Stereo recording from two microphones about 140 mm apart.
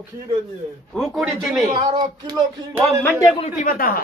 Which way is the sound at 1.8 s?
30° right (ahead or behind).